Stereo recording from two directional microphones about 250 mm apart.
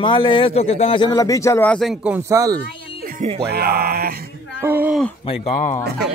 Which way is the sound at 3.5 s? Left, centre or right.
Right.